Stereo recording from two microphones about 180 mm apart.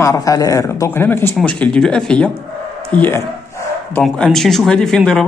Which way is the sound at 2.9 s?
10° left (ahead or behind).